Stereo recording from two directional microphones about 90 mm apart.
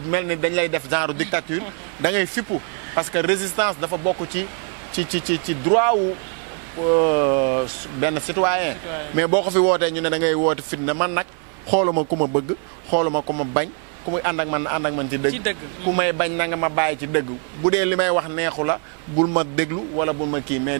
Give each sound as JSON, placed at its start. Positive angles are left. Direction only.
{"t": 0.1, "sound": "a man's voice", "side_deg": -20}